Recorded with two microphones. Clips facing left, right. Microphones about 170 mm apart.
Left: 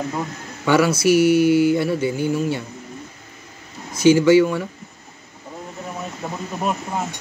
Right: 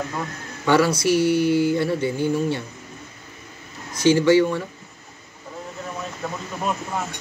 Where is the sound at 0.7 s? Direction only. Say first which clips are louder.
Left 2 dB; 10° left (ahead or behind).